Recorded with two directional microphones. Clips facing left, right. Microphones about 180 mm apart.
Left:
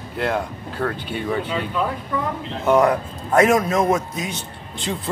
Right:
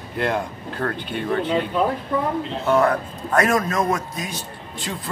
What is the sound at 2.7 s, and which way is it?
A man's voice, 15° left (ahead or behind).